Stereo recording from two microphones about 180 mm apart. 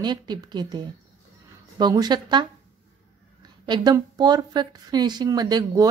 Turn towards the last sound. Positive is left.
turn(degrees=-20)  # may be behind; listen again after turning